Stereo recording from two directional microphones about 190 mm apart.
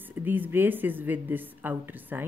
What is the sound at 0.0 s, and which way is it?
Speech, 10° right (ahead or behind).